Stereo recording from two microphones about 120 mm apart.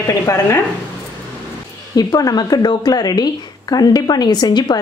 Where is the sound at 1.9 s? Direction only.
35° left (ahead or behind).